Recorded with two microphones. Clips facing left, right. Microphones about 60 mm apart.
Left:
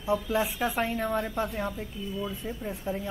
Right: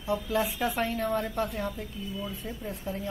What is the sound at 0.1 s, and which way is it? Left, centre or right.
A woman's voice, centre.